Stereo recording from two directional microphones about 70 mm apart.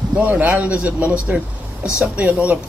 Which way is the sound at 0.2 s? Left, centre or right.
Right.